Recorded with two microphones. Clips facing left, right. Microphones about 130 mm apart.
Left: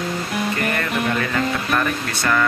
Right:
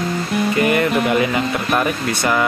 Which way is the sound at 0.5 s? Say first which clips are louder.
Right 7 dB; 15° right (ahead or behind).